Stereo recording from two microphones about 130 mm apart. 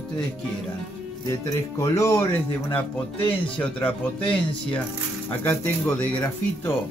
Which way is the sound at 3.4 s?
10° left (ahead or behind).